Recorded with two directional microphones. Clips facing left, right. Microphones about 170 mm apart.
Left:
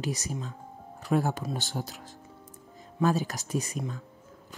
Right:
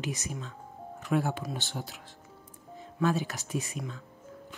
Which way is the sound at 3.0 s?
40° left (ahead or behind).